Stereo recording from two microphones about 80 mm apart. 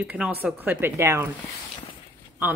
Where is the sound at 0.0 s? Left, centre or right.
Centre.